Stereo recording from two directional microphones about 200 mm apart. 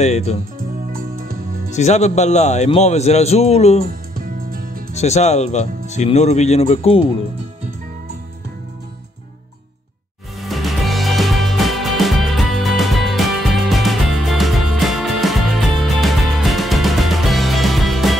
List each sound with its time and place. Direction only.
0.0 s speech: 35° left (ahead or behind)
1.8 s speech: 35° left (ahead or behind)
4.9 s speech: 35° left (ahead or behind)
10.5 s music: centre (ahead or behind)